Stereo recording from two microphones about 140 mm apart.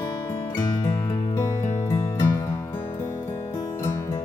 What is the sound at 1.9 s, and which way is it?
Music, 20° left (ahead or behind).